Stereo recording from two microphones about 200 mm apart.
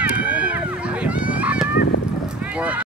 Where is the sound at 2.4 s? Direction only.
5° right (ahead or behind).